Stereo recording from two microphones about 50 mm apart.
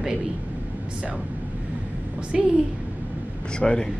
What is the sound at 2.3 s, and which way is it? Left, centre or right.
Speech, centre.